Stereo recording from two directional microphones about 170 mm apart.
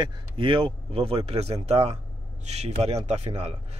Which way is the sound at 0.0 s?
30° right (ahead or behind).